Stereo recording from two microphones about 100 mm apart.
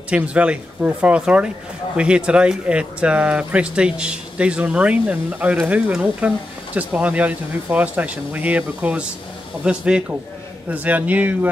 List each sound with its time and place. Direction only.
0.1 s speech: 10° right (ahead or behind)